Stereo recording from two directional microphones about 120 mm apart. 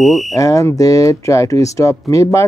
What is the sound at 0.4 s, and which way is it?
Speech, 30° left (ahead or behind).